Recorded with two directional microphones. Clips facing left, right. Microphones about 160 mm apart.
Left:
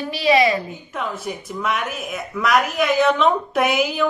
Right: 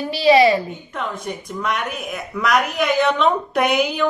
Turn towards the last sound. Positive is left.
turn(degrees=0)  # may be behind; listen again after turning